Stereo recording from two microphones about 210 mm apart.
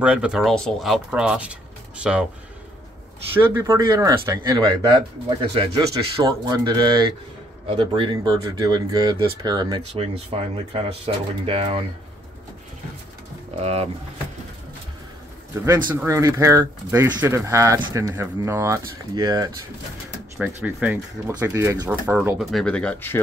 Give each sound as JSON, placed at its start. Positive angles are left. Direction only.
{"t": 0.0, "sound": "speech", "side_deg": -5}
{"t": 3.3, "sound": "speech", "side_deg": -15}
{"t": 13.6, "sound": "speech", "side_deg": -30}
{"t": 16.1, "sound": "speech", "side_deg": -15}
{"t": 20.3, "sound": "speech", "side_deg": -5}